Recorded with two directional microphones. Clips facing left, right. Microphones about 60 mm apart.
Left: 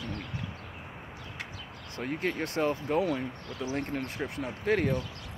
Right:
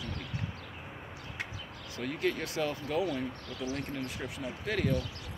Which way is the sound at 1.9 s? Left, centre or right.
Left.